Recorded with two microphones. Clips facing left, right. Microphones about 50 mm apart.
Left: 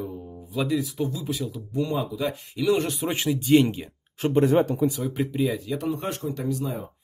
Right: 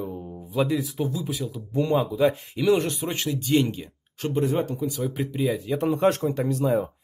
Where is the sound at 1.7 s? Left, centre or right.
Right.